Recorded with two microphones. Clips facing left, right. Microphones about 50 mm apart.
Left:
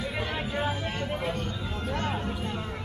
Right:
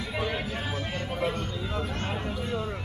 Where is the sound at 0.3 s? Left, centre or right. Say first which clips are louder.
Left 2 dB; centre.